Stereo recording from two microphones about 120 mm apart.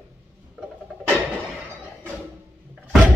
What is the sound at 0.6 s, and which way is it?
Music, 5° right (ahead or behind).